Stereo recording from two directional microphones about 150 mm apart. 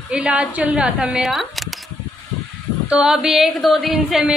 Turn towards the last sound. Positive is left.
turn(degrees=-5)  # may be behind; listen again after turning